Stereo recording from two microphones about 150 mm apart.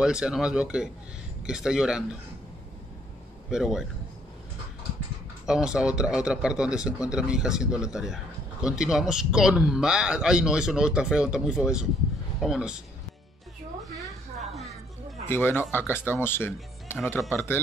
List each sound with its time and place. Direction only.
0.0 s speech: 5° right (ahead or behind)
3.4 s speech: 5° right (ahead or behind)
5.5 s speech: 5° right (ahead or behind)
14.4 s music: centre (ahead or behind)
15.2 s speech: 15° left (ahead or behind)